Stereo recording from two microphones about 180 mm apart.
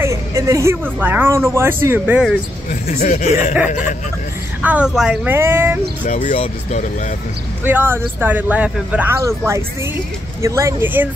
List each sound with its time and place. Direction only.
0.0 s a sound: 15° right (ahead or behind)
0.9 s speech: 10° right (ahead or behind)
2.7 s speech: 45° left (ahead or behind)
4.6 s speech: 5° right (ahead or behind)
6.0 s speech: 45° left (ahead or behind)
7.6 s speech: 10° right (ahead or behind)